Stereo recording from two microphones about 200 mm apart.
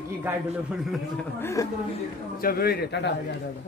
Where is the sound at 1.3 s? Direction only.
15° left (ahead or behind).